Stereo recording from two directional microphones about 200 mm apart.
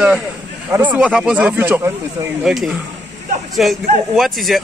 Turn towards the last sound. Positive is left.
turn(degrees=0)  # may be behind; listen again after turning